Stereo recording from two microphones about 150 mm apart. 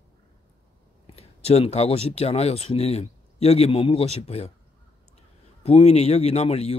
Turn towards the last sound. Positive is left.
turn(degrees=45)  # may be behind; listen again after turning